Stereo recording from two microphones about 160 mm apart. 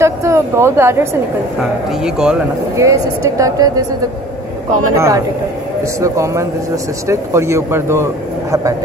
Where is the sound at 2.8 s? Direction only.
20° right (ahead or behind).